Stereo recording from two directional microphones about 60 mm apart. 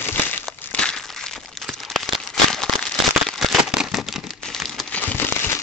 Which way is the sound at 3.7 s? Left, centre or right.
Centre.